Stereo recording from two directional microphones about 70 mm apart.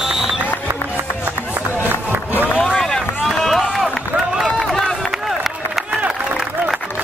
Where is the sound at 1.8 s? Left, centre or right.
Right.